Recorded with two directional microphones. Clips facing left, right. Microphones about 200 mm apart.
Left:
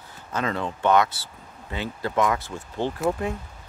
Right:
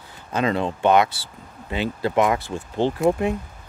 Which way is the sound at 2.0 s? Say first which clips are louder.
Right 3 dB; 20° right (ahead or behind).